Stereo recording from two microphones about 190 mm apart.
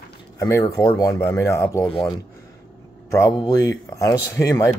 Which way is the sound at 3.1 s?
15° left (ahead or behind).